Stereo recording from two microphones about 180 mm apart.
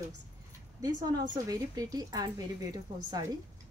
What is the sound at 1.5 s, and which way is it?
A woman's voice, 20° right (ahead or behind).